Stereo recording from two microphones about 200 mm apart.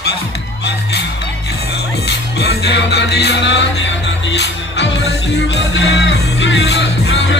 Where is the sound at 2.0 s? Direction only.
55° left (ahead or behind).